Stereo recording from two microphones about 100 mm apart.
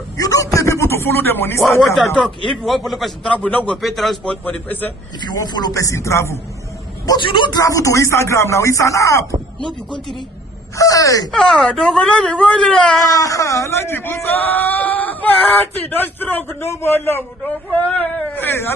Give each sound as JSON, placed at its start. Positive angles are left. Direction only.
{"t": 0.2, "sound": "a sound", "side_deg": 35}
{"t": 2.1, "sound": "a man's voice", "side_deg": 5}
{"t": 3.3, "sound": "speech", "side_deg": 15}
{"t": 3.7, "sound": "speech", "side_deg": 0}
{"t": 5.2, "sound": "speech", "side_deg": 45}
{"t": 7.2, "sound": "a man's voice", "side_deg": 50}
{"t": 7.6, "sound": "speech", "side_deg": 35}
{"t": 10.8, "sound": "speech", "side_deg": 35}
{"t": 11.3, "sound": "speech", "side_deg": 5}
{"t": 13.0, "sound": "speech", "side_deg": 35}
{"t": 17.6, "sound": "speech", "side_deg": 15}